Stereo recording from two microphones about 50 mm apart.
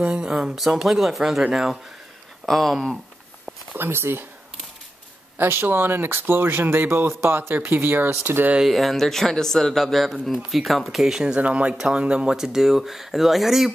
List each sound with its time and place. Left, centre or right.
0.0 s a sound: right
0.3 s speech: centre
3.7 s speech: right
5.4 s speech: right
8.6 s speech: centre
11.3 s speech: right; by 13.7 s centre